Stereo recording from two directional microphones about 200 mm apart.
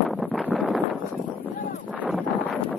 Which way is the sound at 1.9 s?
5° right (ahead or behind).